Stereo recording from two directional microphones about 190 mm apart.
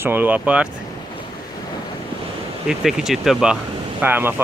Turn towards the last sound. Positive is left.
turn(degrees=-10)  # may be behind; listen again after turning